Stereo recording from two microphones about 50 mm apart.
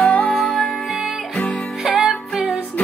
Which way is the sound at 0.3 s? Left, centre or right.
Centre.